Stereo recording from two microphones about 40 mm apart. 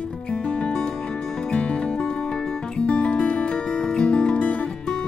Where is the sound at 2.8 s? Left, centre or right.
Left.